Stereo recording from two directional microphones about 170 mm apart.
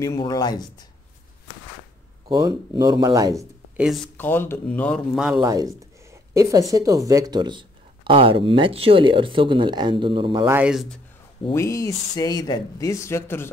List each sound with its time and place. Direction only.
0.2 s speech: 25° left (ahead or behind)
2.2 s speech: 25° right (ahead or behind)
3.3 s speech: centre (ahead or behind)
4.2 s speech: 15° left (ahead or behind)
5.1 s speech: 5° right (ahead or behind)
5.4 s a woman's voice: 20° right (ahead or behind)
10.4 s speech: 15° right (ahead or behind)
10.7 s speech: centre (ahead or behind)
11.5 s speech: 20° left (ahead or behind)